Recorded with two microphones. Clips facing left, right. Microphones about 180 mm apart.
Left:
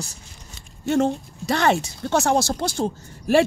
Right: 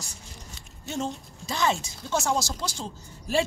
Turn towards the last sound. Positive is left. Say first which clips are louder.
# left 8 dB
turn(degrees=60)  # may be behind; listen again after turning